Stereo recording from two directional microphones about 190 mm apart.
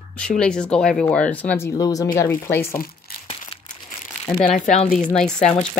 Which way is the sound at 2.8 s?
50° left (ahead or behind).